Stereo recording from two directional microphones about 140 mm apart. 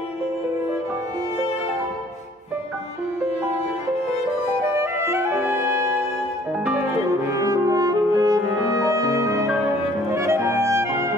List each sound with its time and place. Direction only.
5.0 s music: 20° right (ahead or behind)